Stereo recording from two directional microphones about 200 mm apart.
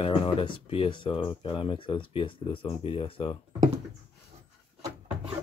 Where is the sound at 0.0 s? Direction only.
25° left (ahead or behind).